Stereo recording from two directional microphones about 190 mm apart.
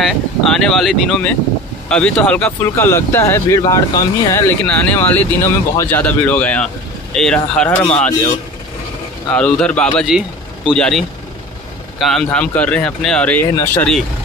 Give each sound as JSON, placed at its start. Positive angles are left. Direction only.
{"t": 0.0, "sound": "speech", "side_deg": 0}
{"t": 9.3, "sound": "speech", "side_deg": 5}